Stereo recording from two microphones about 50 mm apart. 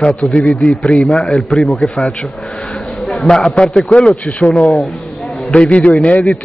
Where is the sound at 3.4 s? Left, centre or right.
Left.